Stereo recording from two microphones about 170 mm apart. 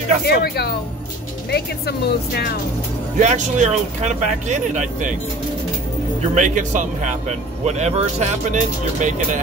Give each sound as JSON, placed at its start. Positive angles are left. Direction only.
{"t": 0.3, "sound": "speech", "side_deg": 70}
{"t": 3.2, "sound": "speech", "side_deg": -45}
{"t": 6.3, "sound": "speech", "side_deg": -45}